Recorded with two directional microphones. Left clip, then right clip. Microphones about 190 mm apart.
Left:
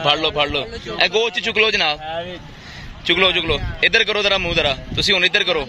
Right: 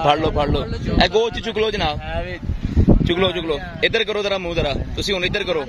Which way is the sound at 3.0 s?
20° right (ahead or behind).